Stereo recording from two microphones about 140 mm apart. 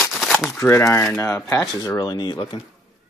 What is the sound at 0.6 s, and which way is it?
Speech, 20° left (ahead or behind).